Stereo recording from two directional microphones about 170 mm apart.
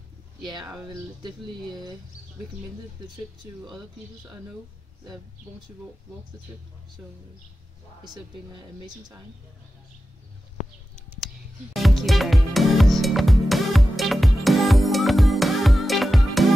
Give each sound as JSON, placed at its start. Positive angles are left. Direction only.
{"t": 0.8, "sound": "speech", "side_deg": -25}
{"t": 7.0, "sound": "speech", "side_deg": -10}
{"t": 8.1, "sound": "speech", "side_deg": -25}
{"t": 11.7, "sound": "music", "side_deg": 0}